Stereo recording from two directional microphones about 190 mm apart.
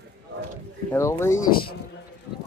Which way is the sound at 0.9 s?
15° left (ahead or behind).